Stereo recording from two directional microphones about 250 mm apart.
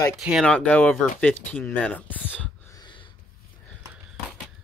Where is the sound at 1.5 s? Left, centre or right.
Centre.